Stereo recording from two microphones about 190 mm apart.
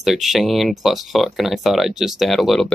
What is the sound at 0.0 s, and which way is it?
Speech, centre (ahead or behind).